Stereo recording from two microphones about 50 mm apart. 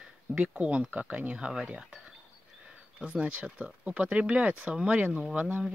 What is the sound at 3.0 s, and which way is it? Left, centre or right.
Speech, right.